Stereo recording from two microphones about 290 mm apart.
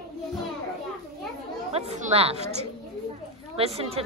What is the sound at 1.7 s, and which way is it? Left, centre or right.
Speech, right.